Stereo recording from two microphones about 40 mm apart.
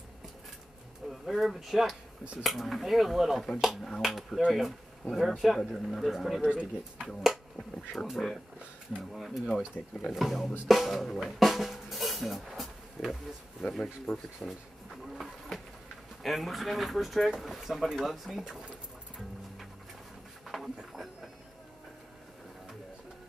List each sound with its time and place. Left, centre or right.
1.0 s speech: centre
6.4 s speech: right
7.1 s speech: centre
9.8 s speech: left
10.1 s speech: centre
11.2 s drum: centre
12.4 s a sound: centre
14.1 s speech: centre
16.2 s speech: centre
18.3 s speech: centre
20.4 s a sound: centre